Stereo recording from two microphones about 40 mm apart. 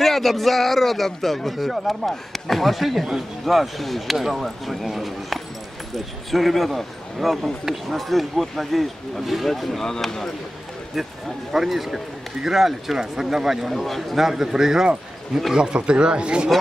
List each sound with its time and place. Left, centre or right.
0.0 s a man's voice: centre
11.5 s speech: centre; by 16.4 s right